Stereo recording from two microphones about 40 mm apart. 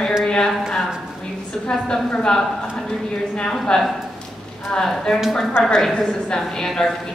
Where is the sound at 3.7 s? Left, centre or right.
Left.